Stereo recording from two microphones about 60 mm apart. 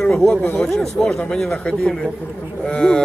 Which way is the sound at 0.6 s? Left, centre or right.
Centre.